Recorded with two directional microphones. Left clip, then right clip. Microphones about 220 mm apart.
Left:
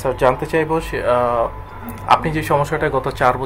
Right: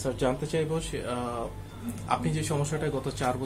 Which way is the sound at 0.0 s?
40° left (ahead or behind).